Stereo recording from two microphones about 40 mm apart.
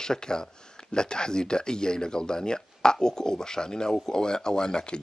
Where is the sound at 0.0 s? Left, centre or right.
Centre.